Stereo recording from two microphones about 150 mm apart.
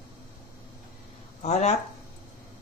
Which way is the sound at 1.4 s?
45° left (ahead or behind).